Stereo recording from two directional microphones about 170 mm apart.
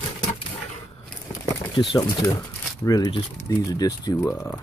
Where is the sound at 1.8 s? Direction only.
30° left (ahead or behind).